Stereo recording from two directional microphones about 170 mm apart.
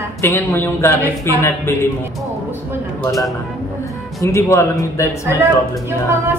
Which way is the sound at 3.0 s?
20° left (ahead or behind).